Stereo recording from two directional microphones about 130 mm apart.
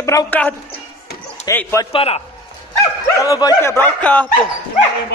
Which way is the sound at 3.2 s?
30° left (ahead or behind).